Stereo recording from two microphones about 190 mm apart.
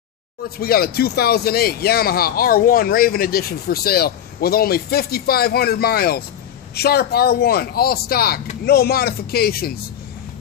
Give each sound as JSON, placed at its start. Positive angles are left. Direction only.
{"t": 0.6, "sound": "speech", "side_deg": 55}